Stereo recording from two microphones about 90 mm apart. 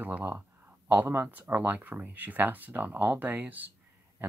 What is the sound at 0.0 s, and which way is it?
Speech, 20° right (ahead or behind).